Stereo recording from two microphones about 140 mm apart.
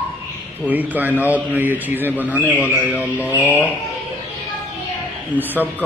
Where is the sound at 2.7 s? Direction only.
15° left (ahead or behind).